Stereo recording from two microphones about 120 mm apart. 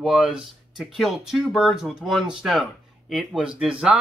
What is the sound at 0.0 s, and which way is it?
Speech, 5° right (ahead or behind).